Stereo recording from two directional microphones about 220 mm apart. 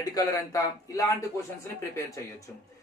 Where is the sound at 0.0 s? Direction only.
15° left (ahead or behind).